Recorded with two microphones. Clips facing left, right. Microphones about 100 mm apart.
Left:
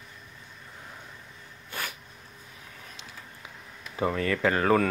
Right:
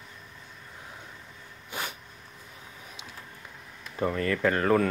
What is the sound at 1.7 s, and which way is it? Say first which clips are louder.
Cat: right 1 dB; 20° right (ahead or behind).